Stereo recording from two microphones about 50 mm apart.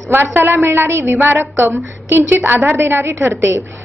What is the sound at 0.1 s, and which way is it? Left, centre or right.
A woman's voice, right.